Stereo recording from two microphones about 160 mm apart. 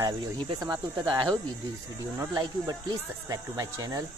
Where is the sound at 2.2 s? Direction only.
25° right (ahead or behind).